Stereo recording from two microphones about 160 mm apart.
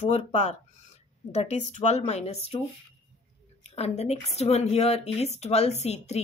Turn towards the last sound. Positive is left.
turn(degrees=40)  # may be behind; listen again after turning